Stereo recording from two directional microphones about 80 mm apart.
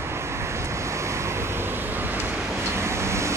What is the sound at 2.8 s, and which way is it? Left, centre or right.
Vehicle, right.